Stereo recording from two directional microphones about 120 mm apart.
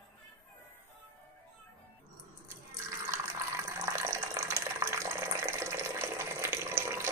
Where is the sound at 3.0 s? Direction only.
20° right (ahead or behind).